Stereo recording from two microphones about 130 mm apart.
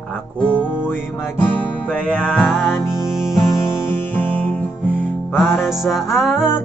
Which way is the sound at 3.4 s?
20° left (ahead or behind).